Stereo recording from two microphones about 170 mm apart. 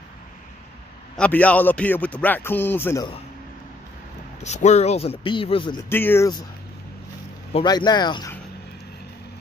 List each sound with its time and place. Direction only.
1.1 s a man's voice: 5° left (ahead or behind)
4.4 s speech: 40° left (ahead or behind)
5.9 s a man's voice: 15° left (ahead or behind)
7.6 s speech: 25° left (ahead or behind)